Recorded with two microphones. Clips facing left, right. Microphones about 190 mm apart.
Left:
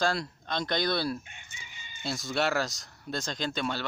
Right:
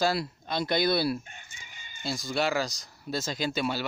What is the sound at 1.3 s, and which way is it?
Chicken, 45° right (ahead or behind).